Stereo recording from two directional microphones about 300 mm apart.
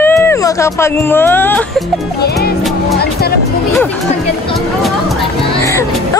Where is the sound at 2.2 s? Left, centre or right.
Left.